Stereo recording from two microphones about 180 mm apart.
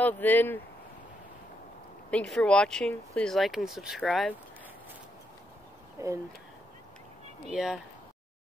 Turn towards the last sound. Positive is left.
turn(degrees=0)  # may be behind; listen again after turning